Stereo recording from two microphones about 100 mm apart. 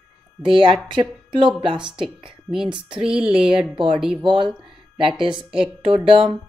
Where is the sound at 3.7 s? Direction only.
60° right (ahead or behind).